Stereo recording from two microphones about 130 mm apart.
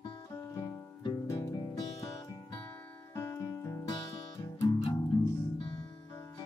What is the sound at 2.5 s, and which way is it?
Music, 15° left (ahead or behind).